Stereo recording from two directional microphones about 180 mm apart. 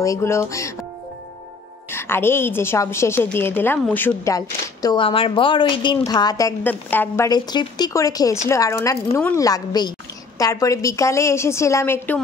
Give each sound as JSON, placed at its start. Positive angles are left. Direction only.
{"t": 0.0, "sound": "a woman's voice", "side_deg": 15}
{"t": 1.9, "sound": "a woman's voice", "side_deg": 15}
{"t": 7.2, "sound": "a woman's voice", "side_deg": 25}